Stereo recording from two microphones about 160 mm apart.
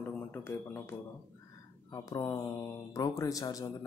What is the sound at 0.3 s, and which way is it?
Speech, 10° left (ahead or behind).